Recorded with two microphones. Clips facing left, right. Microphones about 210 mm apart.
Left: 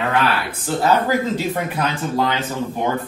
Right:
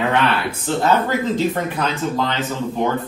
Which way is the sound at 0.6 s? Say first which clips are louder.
Left 1 dB; 10° left (ahead or behind).